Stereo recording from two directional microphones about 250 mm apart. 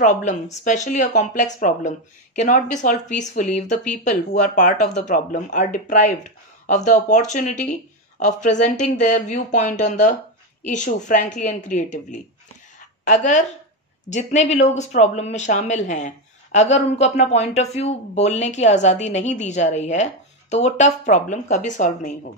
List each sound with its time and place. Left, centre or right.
0.0 s a woman's voice: left